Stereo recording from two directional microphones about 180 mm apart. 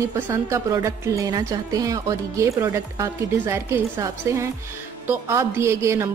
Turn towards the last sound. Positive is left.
turn(degrees=-15)  # may be behind; listen again after turning